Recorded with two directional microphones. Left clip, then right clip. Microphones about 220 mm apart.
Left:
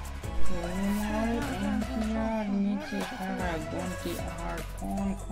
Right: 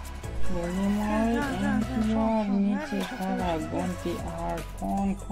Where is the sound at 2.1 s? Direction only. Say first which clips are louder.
Right 6 dB; 30° right (ahead or behind).